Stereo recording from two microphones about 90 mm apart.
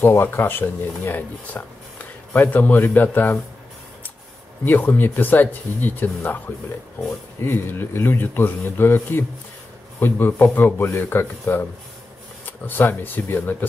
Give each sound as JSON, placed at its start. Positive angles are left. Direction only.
{"t": 0.0, "sound": "speech", "side_deg": 25}
{"t": 4.6, "sound": "speech", "side_deg": 20}